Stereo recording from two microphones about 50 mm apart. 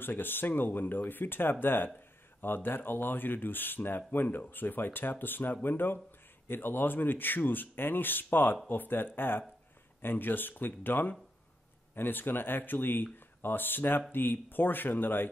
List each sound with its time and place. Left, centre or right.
0.0 s speech: left